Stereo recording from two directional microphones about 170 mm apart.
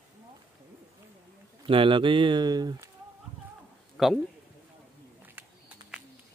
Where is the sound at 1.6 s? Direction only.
30° right (ahead or behind).